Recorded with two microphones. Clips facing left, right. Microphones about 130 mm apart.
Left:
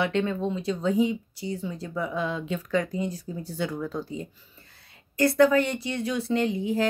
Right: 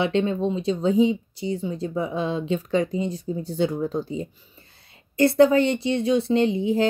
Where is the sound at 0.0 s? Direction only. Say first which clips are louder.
Right 4 dB; 25° right (ahead or behind).